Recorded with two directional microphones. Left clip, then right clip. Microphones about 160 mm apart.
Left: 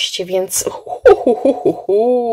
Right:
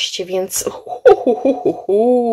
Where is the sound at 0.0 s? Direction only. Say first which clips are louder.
Left 2 dB; centre (ahead or behind).